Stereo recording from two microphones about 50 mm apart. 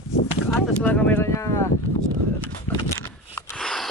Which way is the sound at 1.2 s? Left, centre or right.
Left.